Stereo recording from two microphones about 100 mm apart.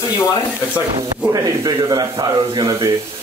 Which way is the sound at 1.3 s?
35° right (ahead or behind).